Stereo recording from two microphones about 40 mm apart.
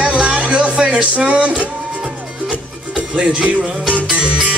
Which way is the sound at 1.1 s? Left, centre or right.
Right.